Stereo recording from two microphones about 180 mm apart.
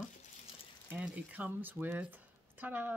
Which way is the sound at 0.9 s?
10° right (ahead or behind).